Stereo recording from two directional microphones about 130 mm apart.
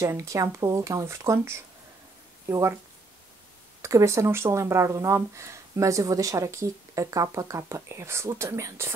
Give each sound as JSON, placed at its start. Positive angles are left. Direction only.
{"t": 0.0, "sound": "speech", "side_deg": -25}
{"t": 3.8, "sound": "speech", "side_deg": -25}